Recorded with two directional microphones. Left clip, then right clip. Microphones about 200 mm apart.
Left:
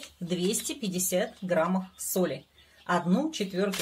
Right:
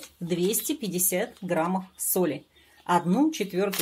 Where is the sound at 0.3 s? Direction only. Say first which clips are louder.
Right 4 dB; 25° right (ahead or behind).